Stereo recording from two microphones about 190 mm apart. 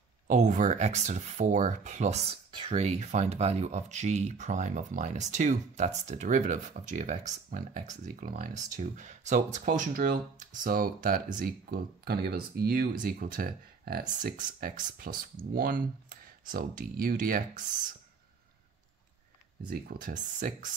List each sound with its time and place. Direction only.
0.3 s speech: 40° right (ahead or behind)
19.7 s speech: 50° right (ahead or behind)